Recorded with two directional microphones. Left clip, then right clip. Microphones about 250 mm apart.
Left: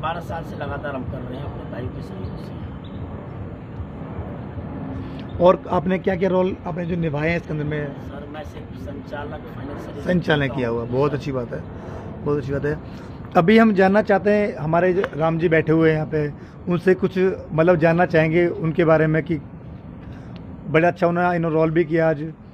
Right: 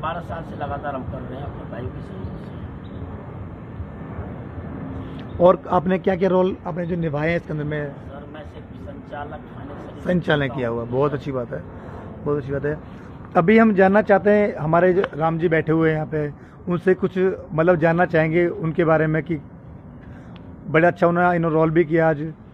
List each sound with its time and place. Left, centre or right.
0.0 s a man's voice: centre
5.4 s speech: centre
10.0 s a man's voice: centre
20.7 s a man's voice: centre